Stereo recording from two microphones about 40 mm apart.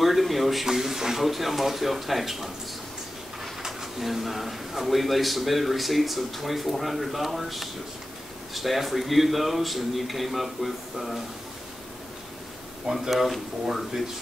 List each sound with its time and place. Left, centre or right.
0.0 s speech: centre
3.6 s speech: centre
13.1 s speech: centre